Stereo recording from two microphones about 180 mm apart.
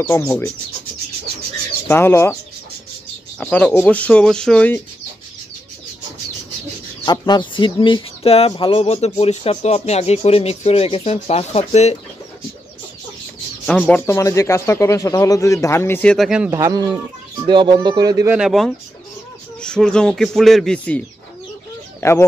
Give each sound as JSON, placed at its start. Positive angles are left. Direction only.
{"t": 0.0, "sound": "speech", "side_deg": 15}
{"t": 1.9, "sound": "speech", "side_deg": 15}
{"t": 3.3, "sound": "speech", "side_deg": 10}
{"t": 7.1, "sound": "speech", "side_deg": 25}
{"t": 13.7, "sound": "speech", "side_deg": 10}
{"t": 16.4, "sound": "speech", "side_deg": -15}
{"t": 18.4, "sound": "speech", "side_deg": 0}